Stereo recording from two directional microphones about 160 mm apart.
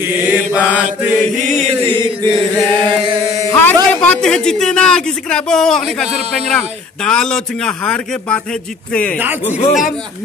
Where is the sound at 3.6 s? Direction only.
10° left (ahead or behind).